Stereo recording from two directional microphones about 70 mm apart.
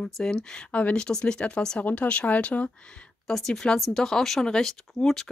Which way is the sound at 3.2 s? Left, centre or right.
Centre.